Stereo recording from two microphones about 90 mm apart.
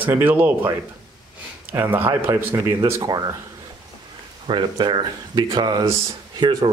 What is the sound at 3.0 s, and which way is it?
Speech, 50° right (ahead or behind).